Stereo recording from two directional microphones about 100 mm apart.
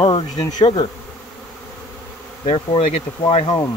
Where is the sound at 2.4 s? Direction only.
65° left (ahead or behind).